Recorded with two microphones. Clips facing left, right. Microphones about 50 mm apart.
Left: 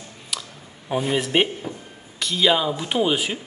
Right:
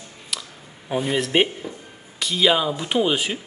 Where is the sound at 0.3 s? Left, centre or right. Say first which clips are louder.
Even; centre.